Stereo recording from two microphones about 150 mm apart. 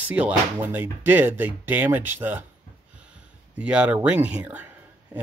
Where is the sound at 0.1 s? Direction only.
10° right (ahead or behind).